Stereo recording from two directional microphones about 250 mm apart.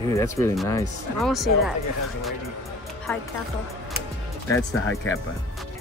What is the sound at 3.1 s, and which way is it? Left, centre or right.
Speech, centre.